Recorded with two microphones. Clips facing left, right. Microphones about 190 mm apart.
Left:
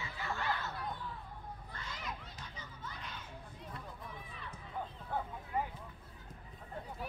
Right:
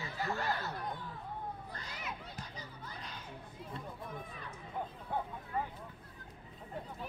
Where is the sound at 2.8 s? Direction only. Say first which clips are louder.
Left 4 dB; 35° right (ahead or behind).